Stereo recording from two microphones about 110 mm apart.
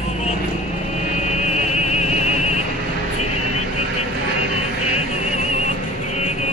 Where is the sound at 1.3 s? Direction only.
90° left.